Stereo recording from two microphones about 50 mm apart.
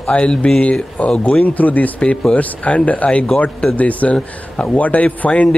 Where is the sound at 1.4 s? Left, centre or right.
Left.